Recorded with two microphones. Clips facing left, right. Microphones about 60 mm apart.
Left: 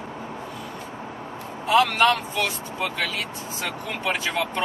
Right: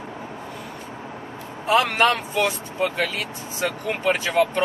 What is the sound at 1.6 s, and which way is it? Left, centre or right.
Speech, right.